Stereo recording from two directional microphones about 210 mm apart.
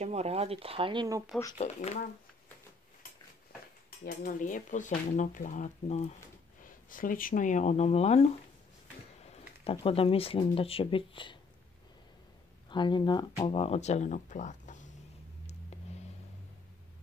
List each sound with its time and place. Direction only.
0.0 s speech: 30° right (ahead or behind)
1.5 s speech: 35° left (ahead or behind)
4.0 s speech: 40° left (ahead or behind)
9.7 s speech: 25° left (ahead or behind)
12.6 s speech: 20° left (ahead or behind)